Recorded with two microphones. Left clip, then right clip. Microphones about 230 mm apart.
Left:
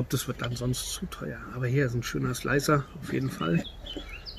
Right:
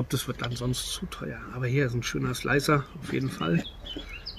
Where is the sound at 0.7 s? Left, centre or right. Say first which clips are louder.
Right 2 dB; left.